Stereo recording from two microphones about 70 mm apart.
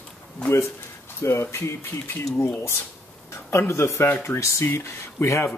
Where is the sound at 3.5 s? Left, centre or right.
Left.